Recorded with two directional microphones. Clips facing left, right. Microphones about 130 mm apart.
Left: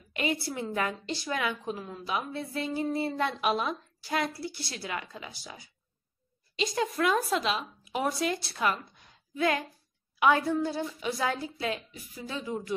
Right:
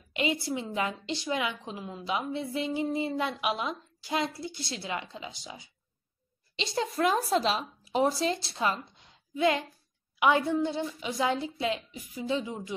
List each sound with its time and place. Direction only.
0.1 s a woman's voice: 20° right (ahead or behind)